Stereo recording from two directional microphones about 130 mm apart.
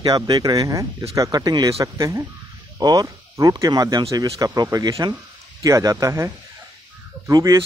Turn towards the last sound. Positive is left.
turn(degrees=-25)  # may be behind; listen again after turning